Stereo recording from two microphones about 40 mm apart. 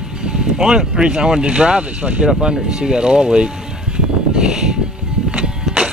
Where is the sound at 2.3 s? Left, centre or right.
Right.